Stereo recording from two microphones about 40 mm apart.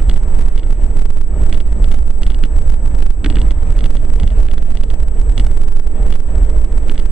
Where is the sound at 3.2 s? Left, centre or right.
Centre.